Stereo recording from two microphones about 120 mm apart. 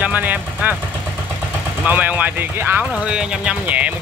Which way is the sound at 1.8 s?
15° right (ahead or behind).